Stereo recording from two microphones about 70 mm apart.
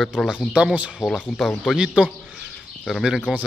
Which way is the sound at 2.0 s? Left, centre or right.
Centre.